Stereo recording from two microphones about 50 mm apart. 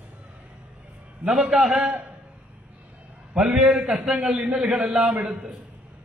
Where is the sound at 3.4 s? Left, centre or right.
Centre.